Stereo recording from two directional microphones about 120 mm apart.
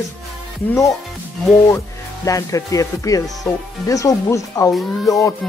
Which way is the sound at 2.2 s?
30° left (ahead or behind).